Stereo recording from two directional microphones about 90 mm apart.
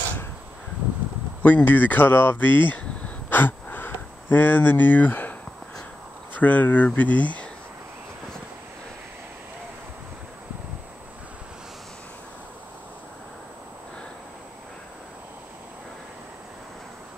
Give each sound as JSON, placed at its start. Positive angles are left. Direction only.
{"t": 1.4, "sound": "speech", "side_deg": 20}
{"t": 3.3, "sound": "a sound", "side_deg": 20}
{"t": 6.3, "sound": "speech", "side_deg": 20}